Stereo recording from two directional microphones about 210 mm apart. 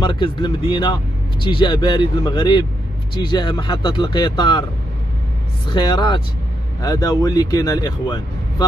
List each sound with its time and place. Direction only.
0.0 s speech: 20° left (ahead or behind)
5.7 s speech: 20° left (ahead or behind)